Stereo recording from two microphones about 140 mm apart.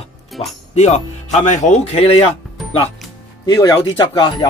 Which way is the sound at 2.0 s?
45° left (ahead or behind).